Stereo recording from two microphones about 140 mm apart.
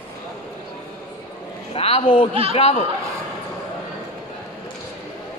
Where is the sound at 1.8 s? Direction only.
40° left (ahead or behind).